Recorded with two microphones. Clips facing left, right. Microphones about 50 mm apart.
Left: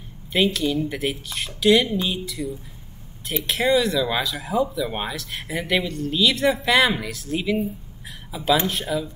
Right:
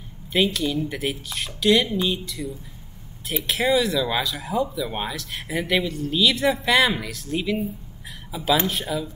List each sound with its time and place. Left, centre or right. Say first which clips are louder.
0.3 s speech: left 1 dB; centre
3.4 s speech: left 1 dB; centre